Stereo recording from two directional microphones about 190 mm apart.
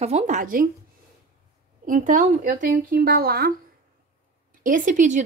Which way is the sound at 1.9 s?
40° right (ahead or behind).